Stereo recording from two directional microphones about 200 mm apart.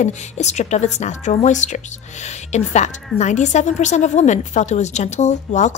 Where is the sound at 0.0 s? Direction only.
35° left (ahead or behind).